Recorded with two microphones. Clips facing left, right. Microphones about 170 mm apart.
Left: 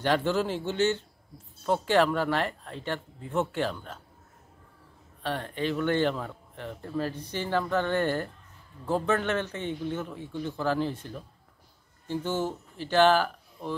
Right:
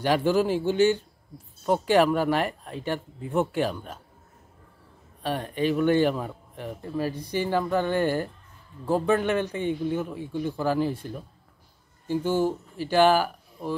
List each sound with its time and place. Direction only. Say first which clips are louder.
0.0 s speech: right 4 dB; 10° right (ahead or behind)
5.2 s speech: right 4 dB; 15° right (ahead or behind)